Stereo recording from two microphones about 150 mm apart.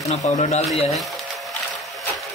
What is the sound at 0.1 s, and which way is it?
Speech, 45° left (ahead or behind).